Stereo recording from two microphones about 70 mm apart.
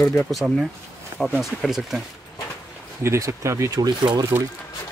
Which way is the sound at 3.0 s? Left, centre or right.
Right.